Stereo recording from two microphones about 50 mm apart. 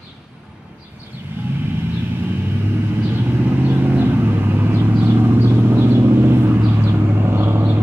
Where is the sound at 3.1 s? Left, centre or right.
Right.